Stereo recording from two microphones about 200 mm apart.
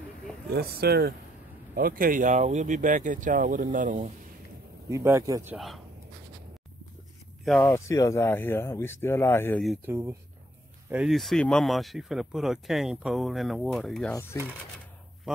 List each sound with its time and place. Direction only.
0.6 s speech: 50° right (ahead or behind)
4.8 s speech: 15° right (ahead or behind)
7.5 s speech: centre (ahead or behind)
7.9 s speech: 15° left (ahead or behind)
9.8 s speech: 15° right (ahead or behind)